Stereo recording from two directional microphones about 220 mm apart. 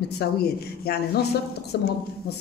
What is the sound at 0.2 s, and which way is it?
A man's voice, 45° left (ahead or behind).